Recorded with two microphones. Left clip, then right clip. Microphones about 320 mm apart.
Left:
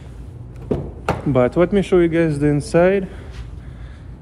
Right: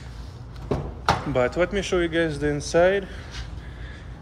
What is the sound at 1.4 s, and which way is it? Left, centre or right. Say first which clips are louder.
Speech: left 6 dB; centre.